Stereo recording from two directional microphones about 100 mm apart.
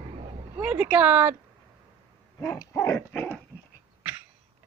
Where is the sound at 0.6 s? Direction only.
15° right (ahead or behind).